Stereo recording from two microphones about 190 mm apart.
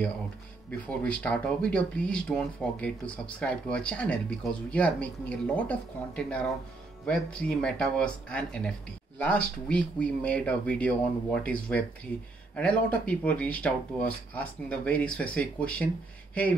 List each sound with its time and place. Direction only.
0.7 s speech: 5° left (ahead or behind)